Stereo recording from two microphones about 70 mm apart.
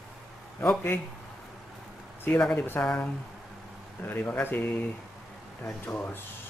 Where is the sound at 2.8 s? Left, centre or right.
Left.